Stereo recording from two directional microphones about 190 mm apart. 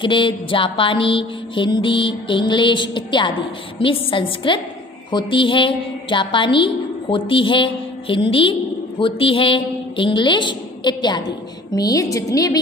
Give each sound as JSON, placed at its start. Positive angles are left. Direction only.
{"t": 0.0, "sound": "music", "side_deg": 25}
{"t": 11.7, "sound": "a woman's voice", "side_deg": 20}